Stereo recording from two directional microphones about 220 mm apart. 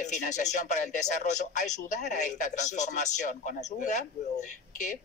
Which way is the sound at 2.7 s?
35° left (ahead or behind).